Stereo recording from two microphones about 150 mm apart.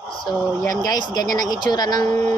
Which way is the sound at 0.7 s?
25° left (ahead or behind).